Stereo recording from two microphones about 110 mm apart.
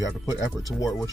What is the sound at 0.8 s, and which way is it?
Speech, 35° left (ahead or behind).